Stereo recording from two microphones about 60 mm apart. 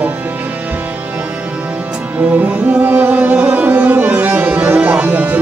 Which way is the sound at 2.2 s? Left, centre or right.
Right.